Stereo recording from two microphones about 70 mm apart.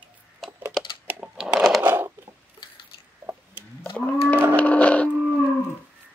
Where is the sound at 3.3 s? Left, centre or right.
Right.